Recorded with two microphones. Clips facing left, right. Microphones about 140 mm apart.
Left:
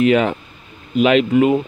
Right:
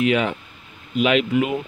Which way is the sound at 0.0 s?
40° left (ahead or behind).